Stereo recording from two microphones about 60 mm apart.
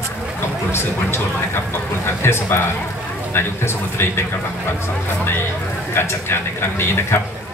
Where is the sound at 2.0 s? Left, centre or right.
Left.